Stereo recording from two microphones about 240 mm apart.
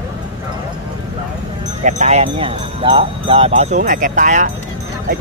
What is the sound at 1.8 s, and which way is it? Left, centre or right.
Speech, right.